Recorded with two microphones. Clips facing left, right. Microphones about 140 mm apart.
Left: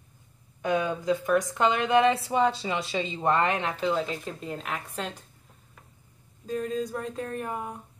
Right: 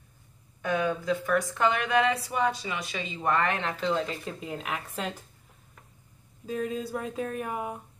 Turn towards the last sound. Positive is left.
turn(degrees=-10)  # may be behind; listen again after turning